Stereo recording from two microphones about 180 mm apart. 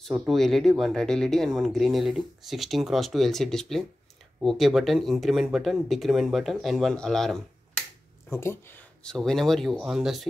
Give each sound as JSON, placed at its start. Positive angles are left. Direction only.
{"t": 0.0, "sound": "speech", "side_deg": 0}
{"t": 8.3, "sound": "speech", "side_deg": 15}